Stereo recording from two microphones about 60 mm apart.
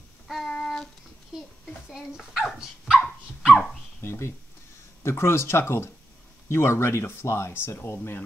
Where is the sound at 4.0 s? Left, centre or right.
Left.